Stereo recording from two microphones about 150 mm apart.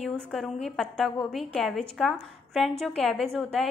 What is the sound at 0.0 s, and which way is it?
A woman's voice, centre (ahead or behind).